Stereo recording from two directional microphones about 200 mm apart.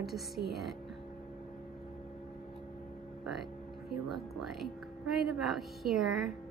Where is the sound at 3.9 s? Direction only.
Centre (ahead or behind).